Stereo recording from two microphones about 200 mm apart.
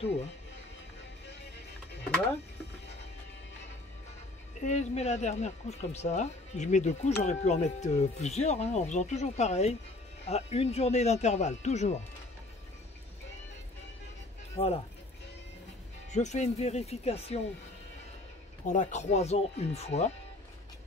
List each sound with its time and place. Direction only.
4.6 s speech: 35° left (ahead or behind)
16.1 s speech: 35° left (ahead or behind)
18.7 s speech: 35° left (ahead or behind)